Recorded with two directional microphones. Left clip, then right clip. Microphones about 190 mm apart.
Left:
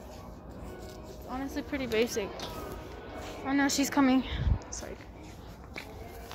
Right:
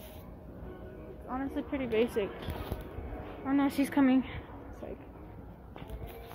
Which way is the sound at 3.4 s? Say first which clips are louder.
Left 2 dB; 15° right (ahead or behind).